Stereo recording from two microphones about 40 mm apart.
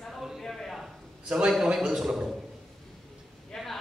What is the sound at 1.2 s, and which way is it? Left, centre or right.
Speech, right.